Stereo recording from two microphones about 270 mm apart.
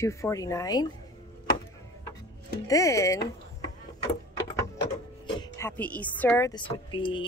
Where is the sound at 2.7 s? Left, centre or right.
Centre.